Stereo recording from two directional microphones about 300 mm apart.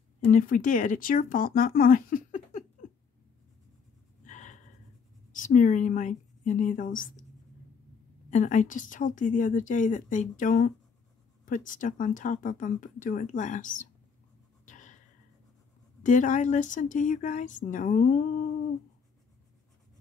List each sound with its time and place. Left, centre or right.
0.2 s speech: left
4.3 s a sound: left
5.3 s a woman's voice: left
8.3 s speech: left
14.7 s writing: left
16.0 s speech: left